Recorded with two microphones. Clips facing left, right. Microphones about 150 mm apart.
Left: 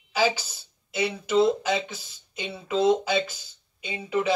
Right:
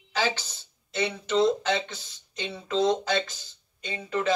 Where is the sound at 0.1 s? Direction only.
10° left (ahead or behind).